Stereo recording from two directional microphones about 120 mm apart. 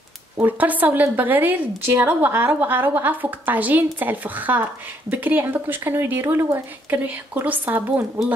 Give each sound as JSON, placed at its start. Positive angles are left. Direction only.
{"t": 0.4, "sound": "a woman's voice", "side_deg": -15}